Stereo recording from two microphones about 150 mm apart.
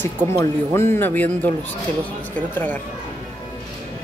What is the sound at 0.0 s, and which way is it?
A man's voice, 15° left (ahead or behind).